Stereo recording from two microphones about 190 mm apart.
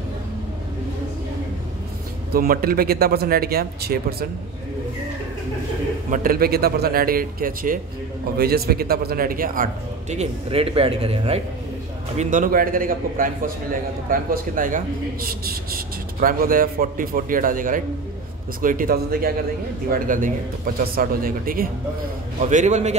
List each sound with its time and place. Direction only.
2.3 s speech: 50° right (ahead or behind)
6.0 s speech: 45° right (ahead or behind)
12.2 s speech: 45° right (ahead or behind)
16.2 s speech: 45° right (ahead or behind)
22.4 s a man's voice: 40° right (ahead or behind)